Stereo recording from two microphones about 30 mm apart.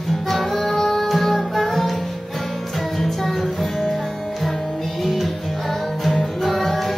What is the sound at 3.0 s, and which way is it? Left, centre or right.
Music, centre.